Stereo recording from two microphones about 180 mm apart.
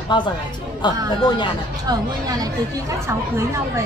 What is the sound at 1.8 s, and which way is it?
Speech, 20° right (ahead or behind).